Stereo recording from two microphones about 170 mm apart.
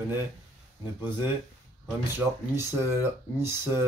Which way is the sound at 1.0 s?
10° right (ahead or behind).